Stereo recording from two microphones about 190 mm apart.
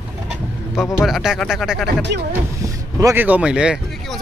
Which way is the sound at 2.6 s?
15° right (ahead or behind).